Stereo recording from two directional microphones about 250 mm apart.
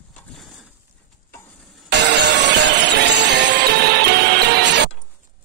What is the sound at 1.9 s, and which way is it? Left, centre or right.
Music, right.